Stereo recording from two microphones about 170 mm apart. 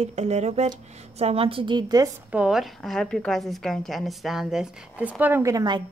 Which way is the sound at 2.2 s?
5° right (ahead or behind).